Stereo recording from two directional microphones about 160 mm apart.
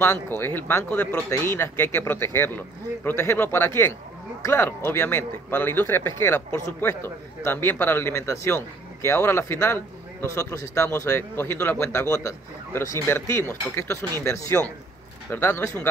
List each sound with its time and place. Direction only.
0.0 s speech: 15° left (ahead or behind)